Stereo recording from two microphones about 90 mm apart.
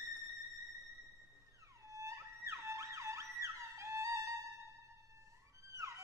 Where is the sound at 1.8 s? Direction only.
35° right (ahead or behind).